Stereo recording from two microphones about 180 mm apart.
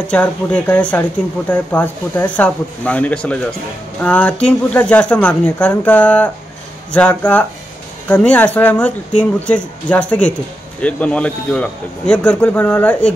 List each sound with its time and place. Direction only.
0.1 s speech: 5° left (ahead or behind)